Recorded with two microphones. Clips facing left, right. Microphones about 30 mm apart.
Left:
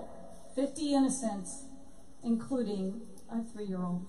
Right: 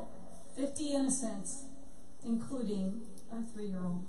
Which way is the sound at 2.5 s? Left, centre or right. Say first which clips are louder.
Left 4 dB; centre.